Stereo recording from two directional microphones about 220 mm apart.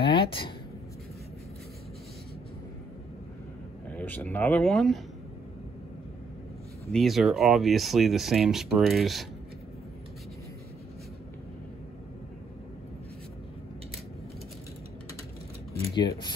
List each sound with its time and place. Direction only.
0.0 s speech: 25° left (ahead or behind)
3.9 s speech: 5° left (ahead or behind)
6.9 s speech: centre (ahead or behind)
15.9 s speech: 20° left (ahead or behind)